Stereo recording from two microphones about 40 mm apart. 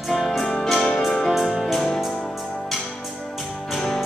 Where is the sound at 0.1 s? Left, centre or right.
Centre.